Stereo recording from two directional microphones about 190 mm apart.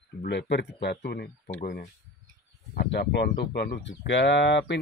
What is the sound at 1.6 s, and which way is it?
Speech, 45° left (ahead or behind).